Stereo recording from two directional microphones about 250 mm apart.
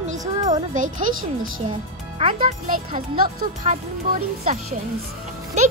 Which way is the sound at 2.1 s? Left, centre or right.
Right.